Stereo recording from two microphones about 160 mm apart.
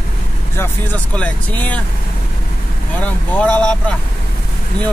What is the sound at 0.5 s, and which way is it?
Speech, 10° left (ahead or behind).